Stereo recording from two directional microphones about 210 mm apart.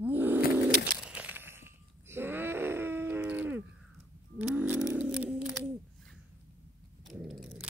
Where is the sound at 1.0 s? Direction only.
5° right (ahead or behind).